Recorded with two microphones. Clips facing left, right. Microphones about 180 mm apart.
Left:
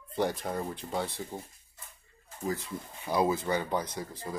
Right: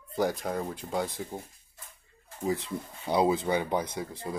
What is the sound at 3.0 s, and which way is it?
Speech, 20° right (ahead or behind).